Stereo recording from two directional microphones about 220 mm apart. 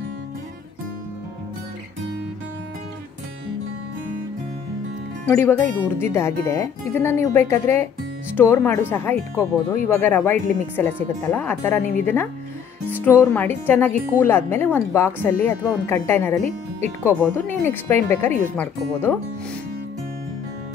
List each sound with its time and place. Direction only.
5.3 s speech: 10° left (ahead or behind)
13.0 s speech: 10° left (ahead or behind)
16.3 s speech: 30° right (ahead or behind)
17.0 s speech: 10° left (ahead or behind)